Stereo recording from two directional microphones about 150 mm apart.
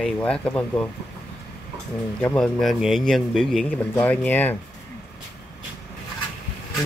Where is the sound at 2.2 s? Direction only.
10° left (ahead or behind).